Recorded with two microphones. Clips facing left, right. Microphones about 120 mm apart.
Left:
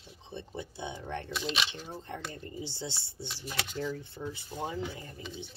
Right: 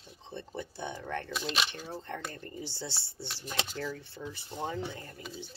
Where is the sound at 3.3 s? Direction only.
Centre (ahead or behind).